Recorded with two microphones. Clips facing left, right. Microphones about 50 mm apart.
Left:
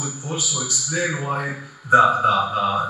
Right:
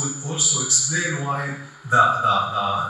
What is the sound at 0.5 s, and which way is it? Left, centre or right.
A man's voice, centre.